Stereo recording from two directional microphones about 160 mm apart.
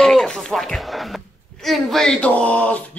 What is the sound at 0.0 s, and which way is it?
Speech, 5° left (ahead or behind).